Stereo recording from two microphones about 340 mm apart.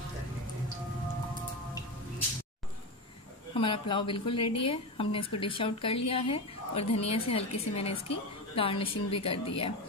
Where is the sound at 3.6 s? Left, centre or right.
Centre.